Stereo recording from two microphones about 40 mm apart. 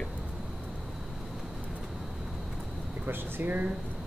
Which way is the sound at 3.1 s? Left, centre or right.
Right.